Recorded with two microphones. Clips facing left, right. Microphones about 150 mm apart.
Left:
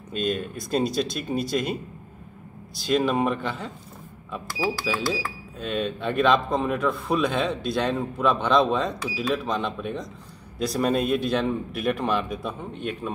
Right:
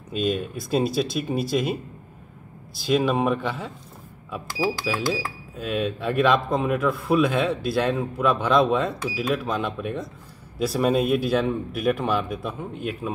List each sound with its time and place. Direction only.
0.1 s speech: 5° right (ahead or behind)
4.5 s speech: 20° right (ahead or behind)
5.6 s speech: 5° right (ahead or behind)